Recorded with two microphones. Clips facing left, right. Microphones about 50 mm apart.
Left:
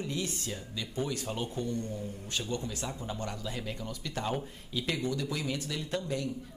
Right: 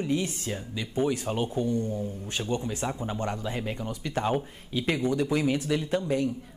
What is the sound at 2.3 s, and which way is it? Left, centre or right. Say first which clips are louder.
A man's voice: right 4 dB; right.